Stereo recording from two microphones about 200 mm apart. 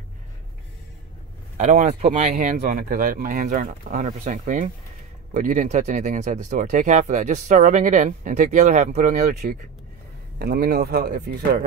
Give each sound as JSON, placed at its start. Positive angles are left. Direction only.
{"t": 1.6, "sound": "speech", "side_deg": -35}
{"t": 10.4, "sound": "speech", "side_deg": -50}